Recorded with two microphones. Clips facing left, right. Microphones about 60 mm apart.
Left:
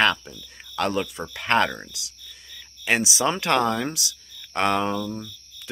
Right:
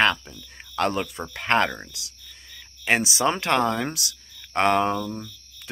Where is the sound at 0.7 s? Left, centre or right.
Right.